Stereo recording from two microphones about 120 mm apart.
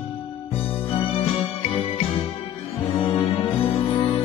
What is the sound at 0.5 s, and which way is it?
Music, 50° left (ahead or behind).